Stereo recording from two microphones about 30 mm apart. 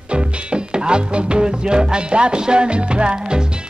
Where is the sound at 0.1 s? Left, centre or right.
Right.